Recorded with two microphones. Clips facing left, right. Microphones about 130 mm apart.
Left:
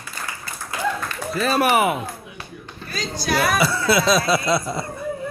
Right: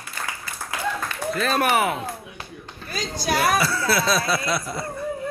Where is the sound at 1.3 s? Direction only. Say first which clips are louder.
Left 3 dB; 5° left (ahead or behind).